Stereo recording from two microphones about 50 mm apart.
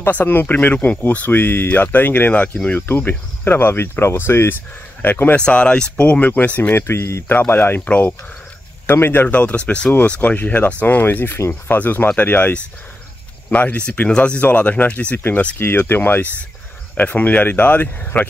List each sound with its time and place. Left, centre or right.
0.1 s speech: left
5.3 s speech: left
6.7 s speech: left
7.2 s speech: left
7.9 s speech: left
8.9 s speech: left
9.3 s speech: left
11.3 s speech: left
11.7 s speech: left
15.1 s speech: left
16.9 s speech: left